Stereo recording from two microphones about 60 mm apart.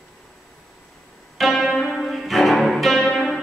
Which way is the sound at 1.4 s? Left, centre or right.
Centre.